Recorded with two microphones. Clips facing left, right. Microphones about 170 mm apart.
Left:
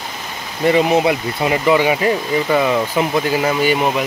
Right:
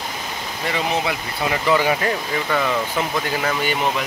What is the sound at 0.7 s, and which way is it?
Speech, 20° left (ahead or behind).